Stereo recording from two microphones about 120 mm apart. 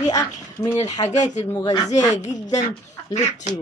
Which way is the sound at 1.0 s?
80° left.